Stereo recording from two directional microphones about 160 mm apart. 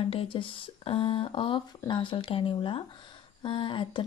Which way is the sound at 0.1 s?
35° left (ahead or behind).